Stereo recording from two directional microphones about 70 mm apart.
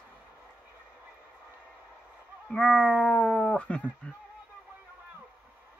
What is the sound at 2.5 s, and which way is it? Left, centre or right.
Cat, centre.